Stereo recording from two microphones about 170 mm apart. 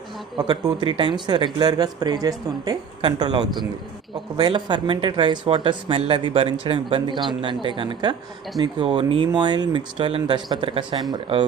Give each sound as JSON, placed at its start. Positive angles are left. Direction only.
{"t": 0.4, "sound": "speech", "side_deg": -25}